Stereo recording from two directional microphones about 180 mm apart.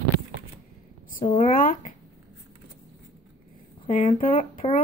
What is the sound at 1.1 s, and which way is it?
Speech, 50° left (ahead or behind).